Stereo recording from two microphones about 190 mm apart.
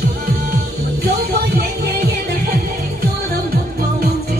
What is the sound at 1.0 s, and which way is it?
Music, 55° right (ahead or behind).